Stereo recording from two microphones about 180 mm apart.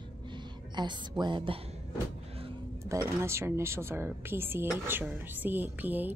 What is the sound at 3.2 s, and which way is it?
Speech, 15° right (ahead or behind).